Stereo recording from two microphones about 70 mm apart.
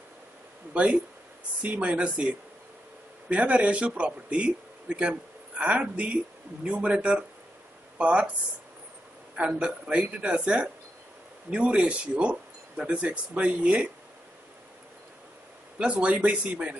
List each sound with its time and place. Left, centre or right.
0.7 s a man's voice: centre
9.6 s speech: centre
15.8 s speech: centre